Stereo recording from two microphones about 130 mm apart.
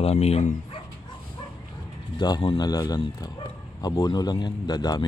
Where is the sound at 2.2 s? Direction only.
35° left (ahead or behind).